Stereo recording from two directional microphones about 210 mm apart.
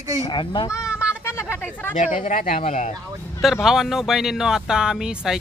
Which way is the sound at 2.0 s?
35° left (ahead or behind).